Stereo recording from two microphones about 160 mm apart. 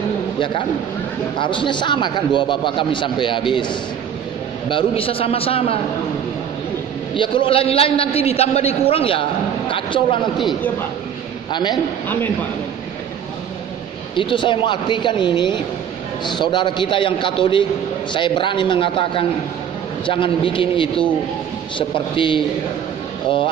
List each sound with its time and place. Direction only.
1.4 s a man's voice: 30° left (ahead or behind)
7.2 s a man's voice: 35° left (ahead or behind)
14.1 s a man's voice: 30° left (ahead or behind)